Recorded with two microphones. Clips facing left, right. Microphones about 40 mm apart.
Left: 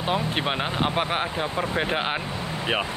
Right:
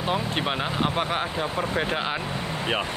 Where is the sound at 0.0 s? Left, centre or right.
Centre.